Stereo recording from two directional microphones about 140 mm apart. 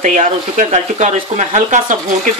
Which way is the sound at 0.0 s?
65° right (ahead or behind).